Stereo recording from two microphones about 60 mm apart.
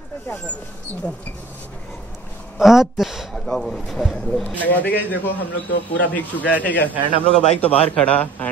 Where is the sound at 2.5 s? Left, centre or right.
Centre.